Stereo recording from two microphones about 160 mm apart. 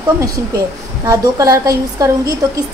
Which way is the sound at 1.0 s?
20° right (ahead or behind).